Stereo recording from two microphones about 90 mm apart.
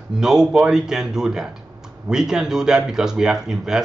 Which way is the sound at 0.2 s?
5° right (ahead or behind).